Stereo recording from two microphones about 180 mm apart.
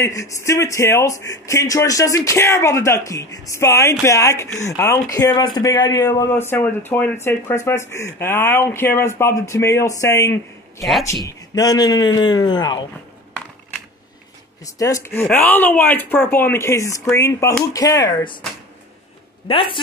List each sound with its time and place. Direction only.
0.0 s speech: 15° left (ahead or behind)
14.6 s speech: 20° left (ahead or behind)
19.4 s speech: 30° left (ahead or behind)